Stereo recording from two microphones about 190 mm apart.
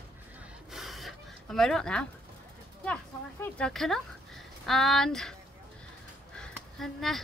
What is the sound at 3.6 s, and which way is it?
Speech, centre (ahead or behind).